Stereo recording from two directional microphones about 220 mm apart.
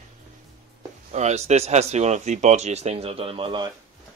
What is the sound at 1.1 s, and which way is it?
Speech, 30° right (ahead or behind).